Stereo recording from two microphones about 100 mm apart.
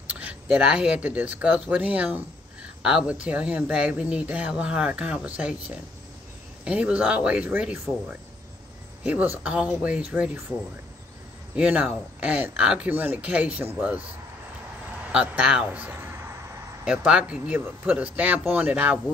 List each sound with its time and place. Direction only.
0.1 s a sound: 15° right (ahead or behind)
0.5 s speech: 10° right (ahead or behind)
9.0 s speech: 15° right (ahead or behind)
11.5 s speech: 10° right (ahead or behind)
15.1 s speech: 10° right (ahead or behind)
16.8 s speech: 10° right (ahead or behind)